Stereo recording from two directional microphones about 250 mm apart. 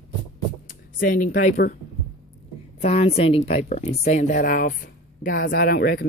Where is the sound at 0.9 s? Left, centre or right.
Left.